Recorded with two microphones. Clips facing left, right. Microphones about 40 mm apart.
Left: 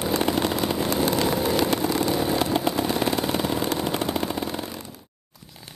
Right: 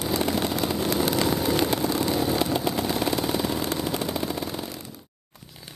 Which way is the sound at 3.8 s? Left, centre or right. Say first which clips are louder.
Left 2 dB; left.